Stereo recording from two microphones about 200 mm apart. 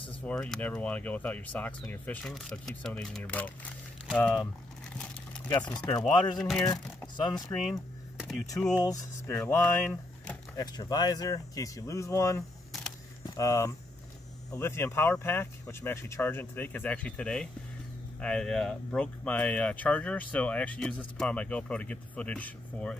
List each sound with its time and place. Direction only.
0.2 s speech: 5° left (ahead or behind)
4.4 s a sound: 5° left (ahead or behind)
5.6 s speech: 5° left (ahead or behind)
6.6 s speech: 20° left (ahead or behind)
8.8 s speech: 15° left (ahead or behind)
10.6 s speech: 20° left (ahead or behind)